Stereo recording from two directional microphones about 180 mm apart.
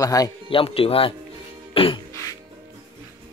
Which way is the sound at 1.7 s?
30° left (ahead or behind).